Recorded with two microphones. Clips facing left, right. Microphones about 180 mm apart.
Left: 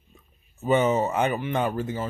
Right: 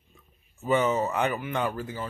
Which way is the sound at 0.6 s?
20° left (ahead or behind).